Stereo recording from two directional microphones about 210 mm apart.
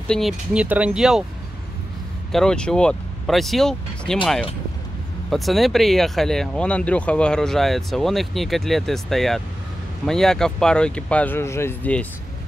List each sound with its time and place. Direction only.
0.1 s speech: centre (ahead or behind)
2.3 s speech: 5° left (ahead or behind)
5.3 s speech: centre (ahead or behind)